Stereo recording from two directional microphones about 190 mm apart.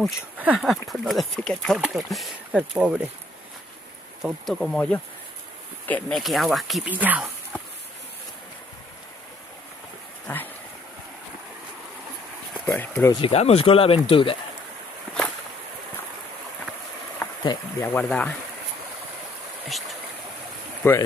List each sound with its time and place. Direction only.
0.4 s speech: 5° right (ahead or behind)
4.2 s speech: centre (ahead or behind)
10.2 s a sound: 10° left (ahead or behind)
12.6 s a sound: 10° left (ahead or behind)
13.1 s speech: 30° left (ahead or behind)
17.4 s speech: 20° left (ahead or behind)
18.0 s speech: 5° left (ahead or behind)
20.8 s speech: 15° left (ahead or behind)